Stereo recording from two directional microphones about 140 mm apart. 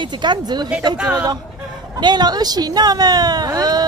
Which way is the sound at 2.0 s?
30° right (ahead or behind).